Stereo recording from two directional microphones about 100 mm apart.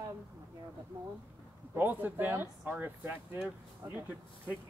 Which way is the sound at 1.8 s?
20° right (ahead or behind).